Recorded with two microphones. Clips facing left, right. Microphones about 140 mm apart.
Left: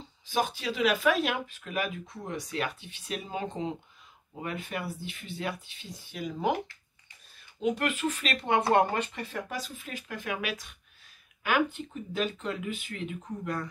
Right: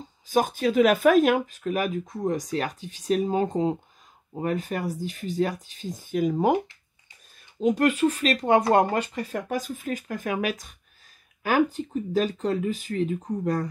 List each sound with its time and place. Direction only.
0.0 s speech: 45° right (ahead or behind)
7.6 s speech: 40° right (ahead or behind)